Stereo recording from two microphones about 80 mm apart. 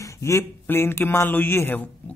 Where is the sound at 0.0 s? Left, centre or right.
Left.